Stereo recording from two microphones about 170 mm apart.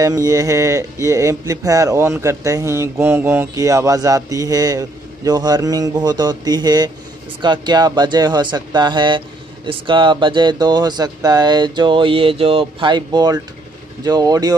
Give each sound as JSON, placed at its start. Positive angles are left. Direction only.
{"t": 0.0, "sound": "speech", "side_deg": -20}